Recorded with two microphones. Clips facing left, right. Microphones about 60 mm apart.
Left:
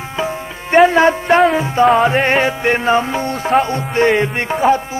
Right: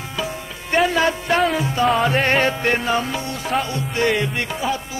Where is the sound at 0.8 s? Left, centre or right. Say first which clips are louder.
Left 7 dB; left.